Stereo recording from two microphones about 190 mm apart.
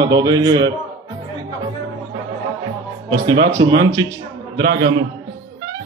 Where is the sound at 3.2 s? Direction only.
20° right (ahead or behind).